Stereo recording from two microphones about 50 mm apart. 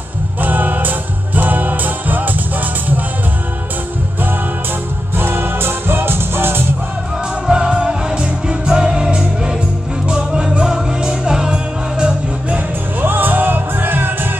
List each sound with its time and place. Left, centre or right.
0.4 s music: right
5.1 s music: right
7.4 s music: centre
13.0 s music: right